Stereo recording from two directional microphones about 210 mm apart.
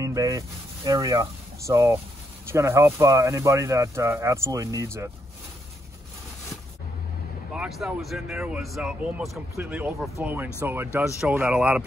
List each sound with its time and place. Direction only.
0.0 s speech: 15° right (ahead or behind)
7.5 s speech: 5° right (ahead or behind)